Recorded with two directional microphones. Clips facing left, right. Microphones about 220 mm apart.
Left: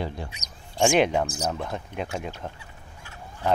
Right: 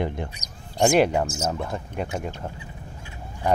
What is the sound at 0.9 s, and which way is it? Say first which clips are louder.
Speech: right 2 dB; 5° right (ahead or behind).